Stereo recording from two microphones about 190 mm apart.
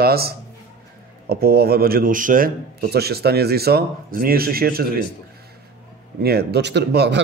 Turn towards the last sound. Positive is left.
turn(degrees=-60)  # may be behind; listen again after turning